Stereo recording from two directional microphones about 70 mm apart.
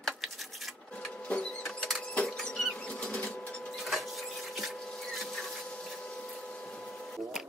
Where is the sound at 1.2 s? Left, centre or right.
Centre.